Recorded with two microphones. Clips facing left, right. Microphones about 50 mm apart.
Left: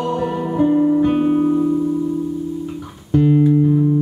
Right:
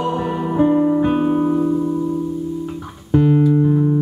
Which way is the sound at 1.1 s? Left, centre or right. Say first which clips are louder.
Left 1 dB; centre.